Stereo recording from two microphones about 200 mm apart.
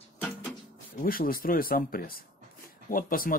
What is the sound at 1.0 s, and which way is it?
Speech, 45° left (ahead or behind).